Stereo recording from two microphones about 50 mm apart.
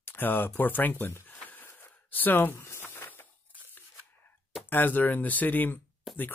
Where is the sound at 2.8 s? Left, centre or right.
Left.